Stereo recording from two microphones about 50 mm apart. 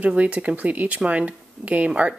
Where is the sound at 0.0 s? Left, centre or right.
Right.